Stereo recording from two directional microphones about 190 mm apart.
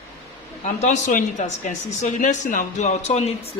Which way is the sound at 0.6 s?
40° left (ahead or behind).